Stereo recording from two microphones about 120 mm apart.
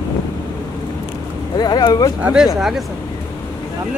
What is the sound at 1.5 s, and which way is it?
Speech, 35° left (ahead or behind).